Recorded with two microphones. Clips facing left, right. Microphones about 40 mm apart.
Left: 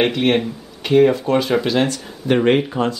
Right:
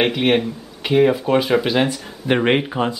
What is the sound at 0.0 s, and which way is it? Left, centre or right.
Speech, centre.